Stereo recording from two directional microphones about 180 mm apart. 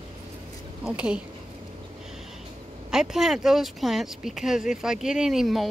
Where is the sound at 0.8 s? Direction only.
5° right (ahead or behind).